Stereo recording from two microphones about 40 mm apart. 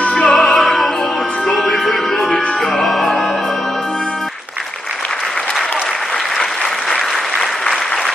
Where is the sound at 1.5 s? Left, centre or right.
Centre.